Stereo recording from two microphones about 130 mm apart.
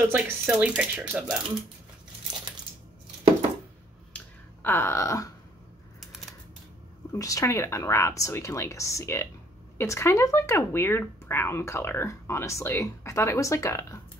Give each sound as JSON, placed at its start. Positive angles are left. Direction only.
{"t": 0.0, "sound": "speech", "side_deg": -10}
{"t": 4.1, "sound": "a sound", "side_deg": 10}
{"t": 4.6, "sound": "speech", "side_deg": 20}
{"t": 7.1, "sound": "speech", "side_deg": 25}